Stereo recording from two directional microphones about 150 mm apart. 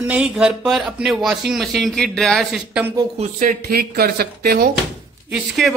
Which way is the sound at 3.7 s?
90° right.